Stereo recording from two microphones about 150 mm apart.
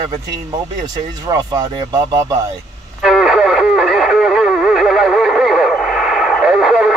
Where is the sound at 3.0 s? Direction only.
5° right (ahead or behind).